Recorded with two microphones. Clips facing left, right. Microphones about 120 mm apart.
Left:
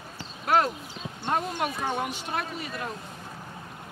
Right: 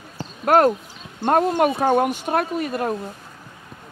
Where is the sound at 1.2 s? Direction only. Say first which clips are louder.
Right 11 dB; 50° right (ahead or behind).